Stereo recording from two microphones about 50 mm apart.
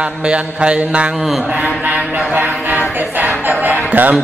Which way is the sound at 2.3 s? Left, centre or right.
Right.